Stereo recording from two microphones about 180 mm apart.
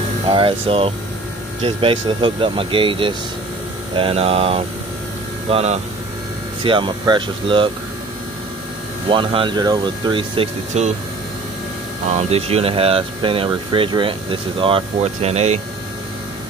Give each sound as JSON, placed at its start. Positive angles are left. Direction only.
{"t": 0.3, "sound": "speech", "side_deg": -30}
{"t": 9.1, "sound": "speech", "side_deg": -30}
{"t": 12.1, "sound": "speech", "side_deg": -35}